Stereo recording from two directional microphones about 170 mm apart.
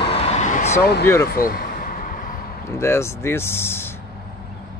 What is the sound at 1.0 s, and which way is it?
Speech, 15° left (ahead or behind).